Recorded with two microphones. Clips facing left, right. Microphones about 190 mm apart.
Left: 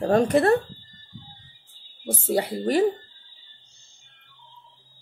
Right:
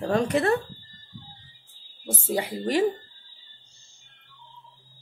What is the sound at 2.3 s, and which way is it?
Speech, 35° left (ahead or behind).